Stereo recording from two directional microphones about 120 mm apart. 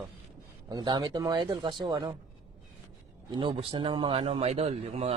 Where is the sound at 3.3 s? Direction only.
40° right (ahead or behind).